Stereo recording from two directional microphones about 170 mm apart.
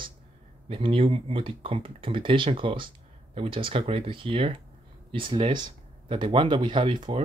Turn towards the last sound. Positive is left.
turn(degrees=-30)  # may be behind; listen again after turning